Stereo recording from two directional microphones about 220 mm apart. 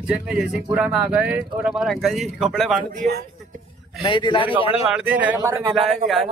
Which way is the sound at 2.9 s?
45° right (ahead or behind).